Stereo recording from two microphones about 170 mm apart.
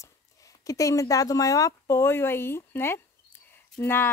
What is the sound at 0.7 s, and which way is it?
Speech, 20° left (ahead or behind).